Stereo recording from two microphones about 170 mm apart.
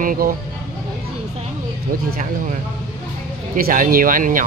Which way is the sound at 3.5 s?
55° right (ahead or behind).